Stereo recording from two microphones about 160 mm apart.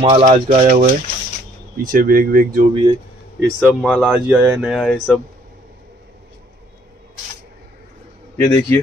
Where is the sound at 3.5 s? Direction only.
Centre (ahead or behind).